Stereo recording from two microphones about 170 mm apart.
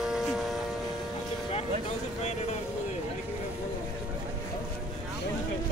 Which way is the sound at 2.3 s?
40° left (ahead or behind).